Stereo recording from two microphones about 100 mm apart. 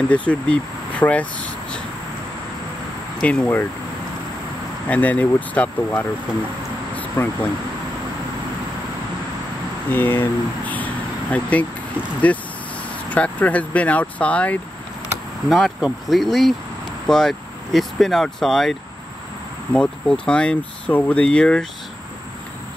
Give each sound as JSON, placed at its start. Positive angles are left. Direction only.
{"t": 0.1, "sound": "speech", "side_deg": 15}
{"t": 3.2, "sound": "speech", "side_deg": 10}
{"t": 4.8, "sound": "speech", "side_deg": 15}
{"t": 7.2, "sound": "speech", "side_deg": 20}
{"t": 9.8, "sound": "speech", "side_deg": 20}
{"t": 15.5, "sound": "speech", "side_deg": 0}